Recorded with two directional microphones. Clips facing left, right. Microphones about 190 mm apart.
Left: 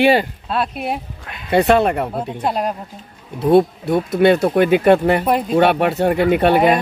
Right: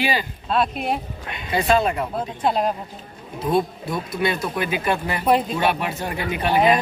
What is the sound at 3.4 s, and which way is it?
Speech, 65° left (ahead or behind).